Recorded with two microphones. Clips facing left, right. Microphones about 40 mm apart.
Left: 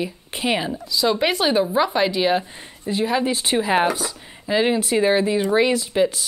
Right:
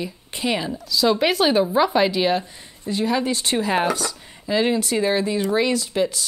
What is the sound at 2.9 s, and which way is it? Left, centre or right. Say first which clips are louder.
Speech: left 1 dB; centre.